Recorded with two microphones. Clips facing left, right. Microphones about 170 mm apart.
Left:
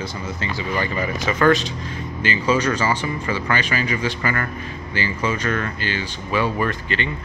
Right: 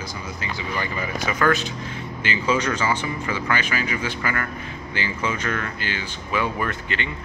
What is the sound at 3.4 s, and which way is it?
Speech, 10° right (ahead or behind).